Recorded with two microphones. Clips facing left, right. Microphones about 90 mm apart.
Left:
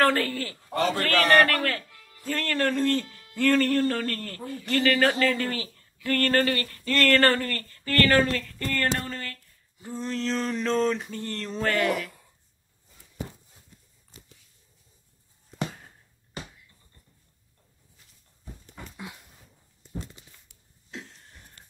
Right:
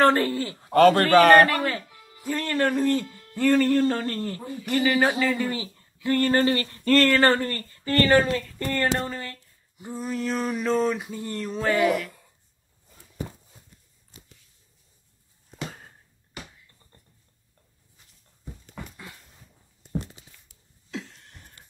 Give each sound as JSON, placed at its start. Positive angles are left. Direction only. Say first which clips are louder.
{"t": 0.0, "sound": "speech", "louder": "right 3 dB", "side_deg": -20}
{"t": 0.7, "sound": "a man's voice", "louder": "right 10 dB", "side_deg": -65}
{"t": 1.4, "sound": "speech", "louder": "right 2 dB", "side_deg": -15}
{"t": 9.1, "sound": "a sound", "louder": "right 2 dB", "side_deg": -20}
{"t": 9.9, "sound": "speech", "louder": "right 1 dB", "side_deg": -10}
{"t": 18.9, "sound": "a sound", "louder": "left 3 dB", "side_deg": 15}